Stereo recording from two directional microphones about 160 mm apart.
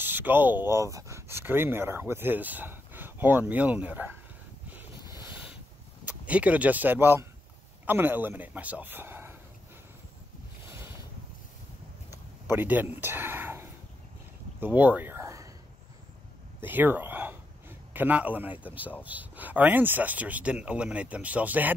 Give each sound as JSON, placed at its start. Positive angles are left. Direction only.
{"t": 0.0, "sound": "speech", "side_deg": -10}
{"t": 4.6, "sound": "vehicle", "side_deg": -15}
{"t": 6.0, "sound": "speech", "side_deg": -10}
{"t": 10.7, "sound": "boat", "side_deg": -15}
{"t": 12.1, "sound": "a sound", "side_deg": -15}
{"t": 16.6, "sound": "speech", "side_deg": -10}